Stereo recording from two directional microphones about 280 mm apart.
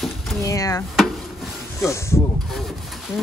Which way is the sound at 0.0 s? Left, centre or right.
Centre.